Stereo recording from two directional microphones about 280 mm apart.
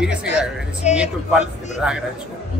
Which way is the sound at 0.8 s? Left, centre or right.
Left.